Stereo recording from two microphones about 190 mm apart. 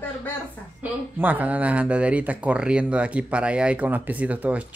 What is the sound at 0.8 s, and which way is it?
Speech, 10° right (ahead or behind).